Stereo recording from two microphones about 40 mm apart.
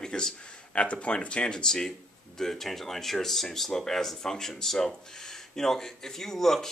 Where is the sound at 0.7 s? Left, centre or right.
Left.